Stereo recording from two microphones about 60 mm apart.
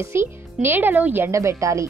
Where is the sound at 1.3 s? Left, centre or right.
Right.